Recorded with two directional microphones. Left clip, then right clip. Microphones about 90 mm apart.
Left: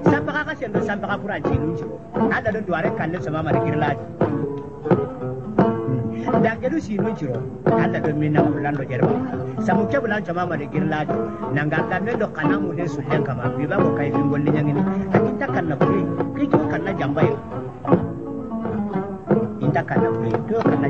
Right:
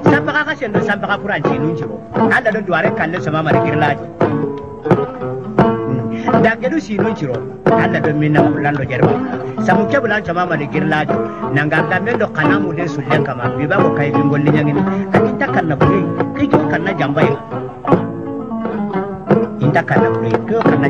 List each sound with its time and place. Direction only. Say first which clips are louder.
0.0 s a man's voice: right 7 dB; 45° right (ahead or behind)
4.9 s music: right 5 dB; 40° right (ahead or behind)
6.2 s a man's voice: right 7 dB; 45° right (ahead or behind)
18.9 s music: right 7 dB; 50° right (ahead or behind)